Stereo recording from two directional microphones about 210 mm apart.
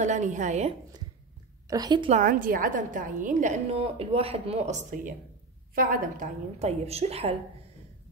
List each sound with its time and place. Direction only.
0.0 s a woman's voice: 35° right (ahead or behind)
1.7 s a woman's voice: 20° right (ahead or behind)
2.0 s a woman's voice: 40° right (ahead or behind)